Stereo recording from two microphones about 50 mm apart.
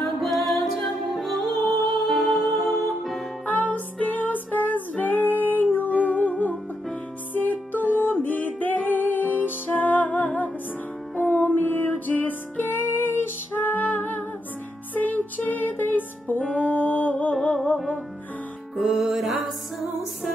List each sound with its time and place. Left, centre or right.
0.2 s music: centre
3.4 s music: left
12.8 s music: left
18.8 s music: centre